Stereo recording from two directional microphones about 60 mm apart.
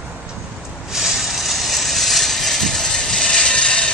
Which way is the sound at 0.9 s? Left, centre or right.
Centre.